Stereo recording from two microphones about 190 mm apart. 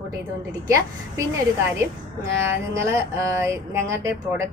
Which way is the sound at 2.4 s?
15° right (ahead or behind).